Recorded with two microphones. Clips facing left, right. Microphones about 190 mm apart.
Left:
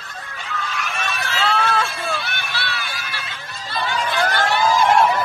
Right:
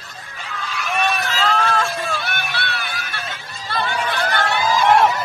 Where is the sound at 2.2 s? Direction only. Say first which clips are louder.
Right 2 dB; 55° right (ahead or behind).